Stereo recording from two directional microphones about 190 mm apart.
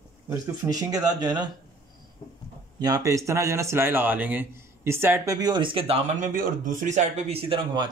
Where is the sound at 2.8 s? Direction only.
20° right (ahead or behind).